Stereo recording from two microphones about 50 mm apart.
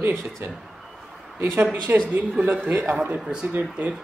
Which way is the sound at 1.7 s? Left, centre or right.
Right.